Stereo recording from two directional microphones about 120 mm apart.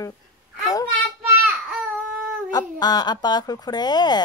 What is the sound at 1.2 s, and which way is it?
Baby cry, 5° right (ahead or behind).